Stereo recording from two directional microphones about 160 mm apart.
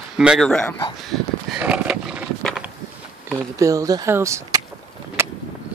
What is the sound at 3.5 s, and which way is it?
Speech, 20° right (ahead or behind).